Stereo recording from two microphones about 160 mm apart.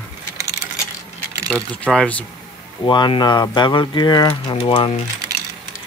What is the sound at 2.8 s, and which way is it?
Speech, 30° left (ahead or behind).